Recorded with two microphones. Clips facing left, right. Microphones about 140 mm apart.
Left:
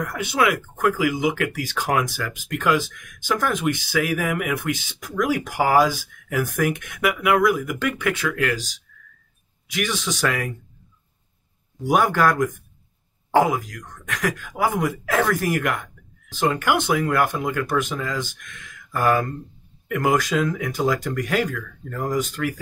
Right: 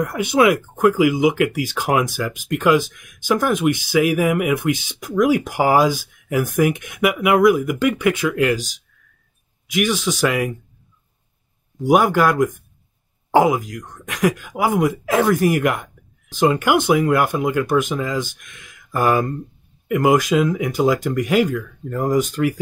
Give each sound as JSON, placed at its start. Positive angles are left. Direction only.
{"t": 0.0, "sound": "speech", "side_deg": -15}
{"t": 9.7, "sound": "speech", "side_deg": -10}
{"t": 11.9, "sound": "speech", "side_deg": -15}